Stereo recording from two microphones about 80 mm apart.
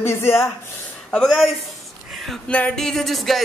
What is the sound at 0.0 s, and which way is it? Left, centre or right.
Speech, left.